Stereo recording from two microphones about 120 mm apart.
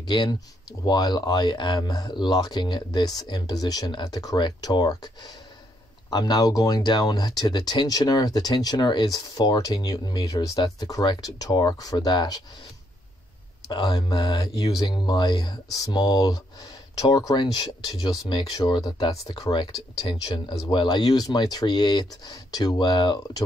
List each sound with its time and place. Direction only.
0.0 s speech: 40° left (ahead or behind)
13.7 s speech: 40° left (ahead or behind)